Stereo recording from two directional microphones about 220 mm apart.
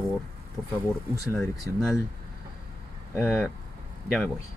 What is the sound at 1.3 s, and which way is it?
Speech, 15° left (ahead or behind).